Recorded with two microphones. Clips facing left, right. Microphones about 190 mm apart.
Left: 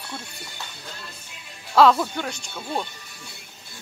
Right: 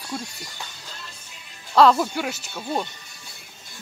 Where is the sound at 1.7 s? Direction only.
Centre (ahead or behind).